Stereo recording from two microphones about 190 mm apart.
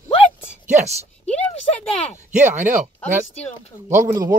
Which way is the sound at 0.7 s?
35° right (ahead or behind).